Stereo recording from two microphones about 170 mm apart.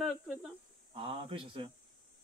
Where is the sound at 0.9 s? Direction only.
35° right (ahead or behind).